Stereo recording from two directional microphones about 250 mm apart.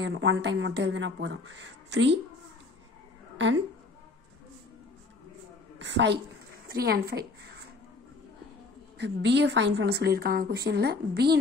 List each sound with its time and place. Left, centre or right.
0.0 s a woman's voice: right
3.3 s a woman's voice: right
5.8 s a woman's voice: right
6.7 s a sound: right
9.0 s a woman's voice: right